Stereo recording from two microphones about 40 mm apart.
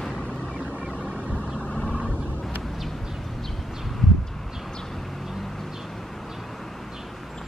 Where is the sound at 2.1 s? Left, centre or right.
Left.